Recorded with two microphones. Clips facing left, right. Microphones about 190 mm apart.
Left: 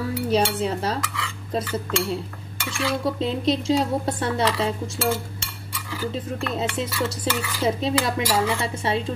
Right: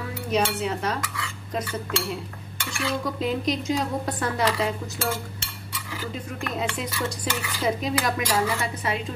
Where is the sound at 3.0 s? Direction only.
30° left (ahead or behind).